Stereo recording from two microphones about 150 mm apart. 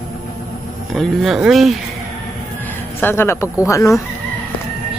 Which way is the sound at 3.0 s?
15° left (ahead or behind).